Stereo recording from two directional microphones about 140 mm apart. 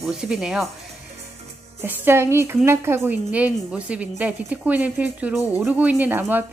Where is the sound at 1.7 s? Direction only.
15° right (ahead or behind).